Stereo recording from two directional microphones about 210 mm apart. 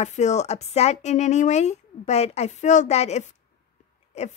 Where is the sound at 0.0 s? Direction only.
35° left (ahead or behind).